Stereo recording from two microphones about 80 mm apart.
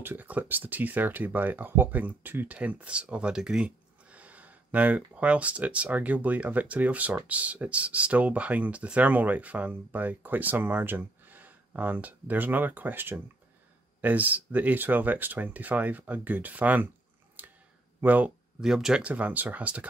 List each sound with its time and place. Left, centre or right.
0.0 s speech: right
17.4 s a sound: right
18.0 s speech: right
18.6 s speech: centre
19.0 s speech: centre